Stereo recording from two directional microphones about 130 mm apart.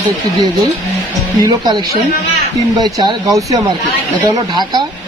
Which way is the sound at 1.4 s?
35° right (ahead or behind).